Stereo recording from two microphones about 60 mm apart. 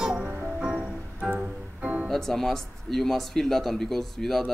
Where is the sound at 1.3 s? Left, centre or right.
Right.